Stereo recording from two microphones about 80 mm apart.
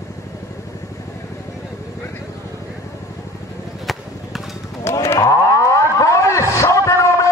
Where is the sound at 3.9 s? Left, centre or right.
Centre.